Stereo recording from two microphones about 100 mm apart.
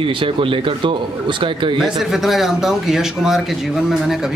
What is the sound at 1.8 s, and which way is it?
A man's voice, 5° right (ahead or behind).